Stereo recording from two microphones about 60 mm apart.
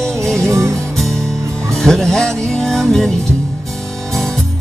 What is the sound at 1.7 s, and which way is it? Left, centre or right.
Music, centre.